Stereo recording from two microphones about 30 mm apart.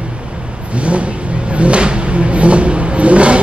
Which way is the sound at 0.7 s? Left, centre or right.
Right.